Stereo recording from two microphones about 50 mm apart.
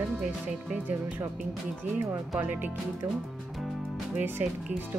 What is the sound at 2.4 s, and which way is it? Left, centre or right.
Speech, right.